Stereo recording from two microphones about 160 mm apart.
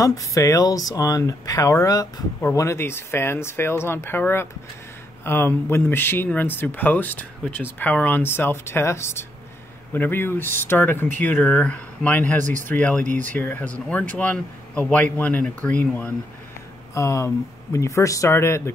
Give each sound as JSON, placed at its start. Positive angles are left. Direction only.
{"t": 0.0, "sound": "speech", "side_deg": 20}
{"t": 12.4, "sound": "speech", "side_deg": -50}
{"t": 12.6, "sound": "speech", "side_deg": 10}
{"t": 13.0, "sound": "speech", "side_deg": -55}
{"t": 13.4, "sound": "speech", "side_deg": 10}